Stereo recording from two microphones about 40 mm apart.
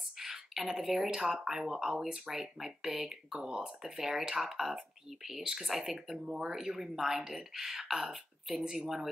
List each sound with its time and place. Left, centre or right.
0.2 s speech: centre